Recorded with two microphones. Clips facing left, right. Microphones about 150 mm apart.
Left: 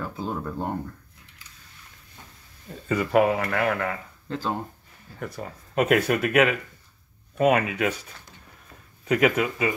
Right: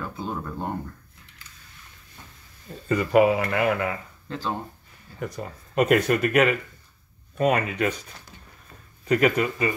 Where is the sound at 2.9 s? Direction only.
Centre (ahead or behind).